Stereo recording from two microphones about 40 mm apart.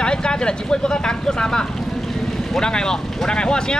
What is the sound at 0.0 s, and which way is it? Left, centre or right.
Vehicle, left.